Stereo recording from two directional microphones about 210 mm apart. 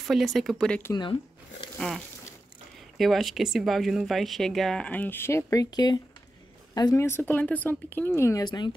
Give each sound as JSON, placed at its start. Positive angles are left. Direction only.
{"t": 0.0, "sound": "speech", "side_deg": 0}